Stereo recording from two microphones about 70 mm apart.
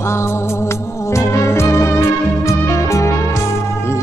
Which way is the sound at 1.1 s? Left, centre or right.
Left.